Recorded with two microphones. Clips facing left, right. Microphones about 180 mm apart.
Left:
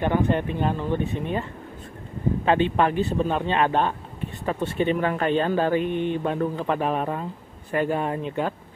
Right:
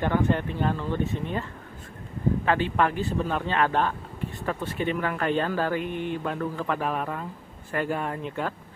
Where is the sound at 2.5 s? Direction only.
20° left (ahead or behind).